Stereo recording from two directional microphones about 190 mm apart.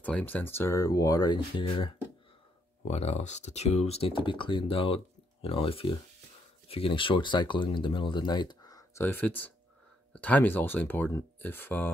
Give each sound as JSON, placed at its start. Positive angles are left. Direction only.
{"t": 0.0, "sound": "speech", "side_deg": 10}